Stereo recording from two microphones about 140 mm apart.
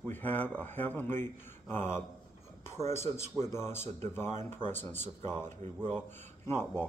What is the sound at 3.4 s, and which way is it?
Speech, 20° left (ahead or behind).